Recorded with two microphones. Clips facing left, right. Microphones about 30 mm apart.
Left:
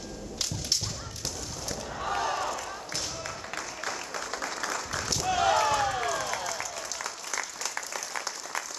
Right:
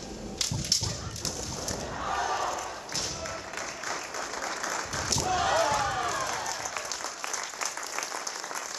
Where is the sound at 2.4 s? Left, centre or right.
Left.